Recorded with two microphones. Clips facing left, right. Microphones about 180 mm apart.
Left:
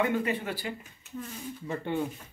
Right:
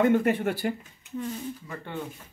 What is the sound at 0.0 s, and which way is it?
Speech, 45° right (ahead or behind).